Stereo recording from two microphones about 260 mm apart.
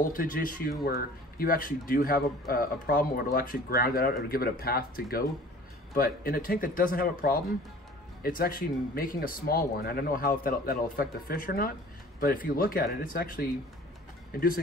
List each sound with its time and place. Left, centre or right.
0.0 s speech: left